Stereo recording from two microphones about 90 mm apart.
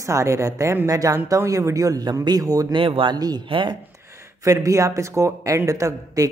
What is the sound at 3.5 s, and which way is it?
Speech, 65° right (ahead or behind).